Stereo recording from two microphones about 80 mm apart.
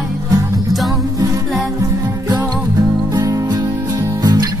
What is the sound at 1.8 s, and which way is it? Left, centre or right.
Music, right.